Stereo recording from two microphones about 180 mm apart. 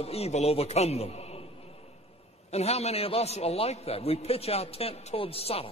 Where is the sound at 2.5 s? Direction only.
35° left (ahead or behind).